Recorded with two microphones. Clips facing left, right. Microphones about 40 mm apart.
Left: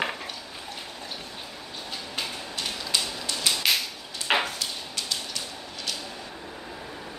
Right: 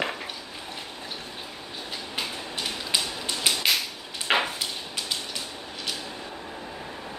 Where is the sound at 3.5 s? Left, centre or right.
Centre.